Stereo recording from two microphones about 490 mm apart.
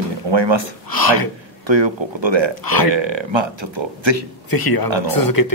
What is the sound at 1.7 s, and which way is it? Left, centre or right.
Speech, right.